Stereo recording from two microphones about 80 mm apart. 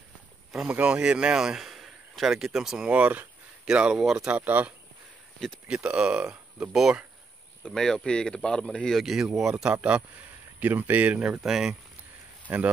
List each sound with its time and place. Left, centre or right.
0.6 s a man's voice: centre
2.9 s a man's voice: centre
4.4 s a man's voice: centre
5.7 s speech: centre
7.6 s a man's voice: centre
11.4 s speech: centre
12.4 s speech: right